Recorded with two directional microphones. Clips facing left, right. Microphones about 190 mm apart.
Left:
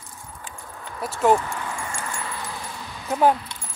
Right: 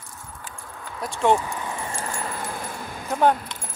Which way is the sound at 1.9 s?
40° right (ahead or behind).